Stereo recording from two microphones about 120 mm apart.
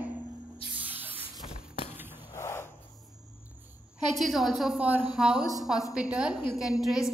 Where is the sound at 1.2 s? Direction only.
50° left (ahead or behind).